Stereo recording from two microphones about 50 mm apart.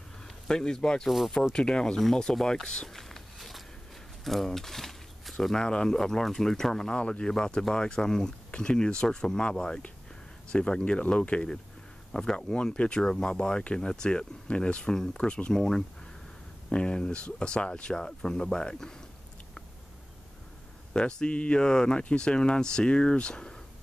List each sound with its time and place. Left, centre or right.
0.5 s speech: centre
1.0 s speech: centre
1.5 s speech: centre
2.9 s a sound: centre
4.2 s speech: centre
20.9 s speech: centre